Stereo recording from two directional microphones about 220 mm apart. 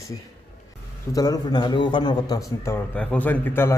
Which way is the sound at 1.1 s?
15° left (ahead or behind).